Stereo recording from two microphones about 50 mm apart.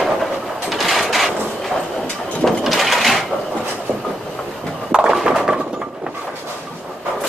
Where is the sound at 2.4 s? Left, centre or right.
Centre.